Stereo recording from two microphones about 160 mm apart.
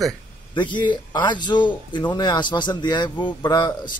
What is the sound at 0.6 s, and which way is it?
A man's voice, 30° left (ahead or behind).